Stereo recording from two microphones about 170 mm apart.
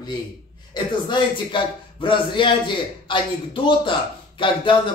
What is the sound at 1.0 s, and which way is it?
A man's voice, 30° left (ahead or behind).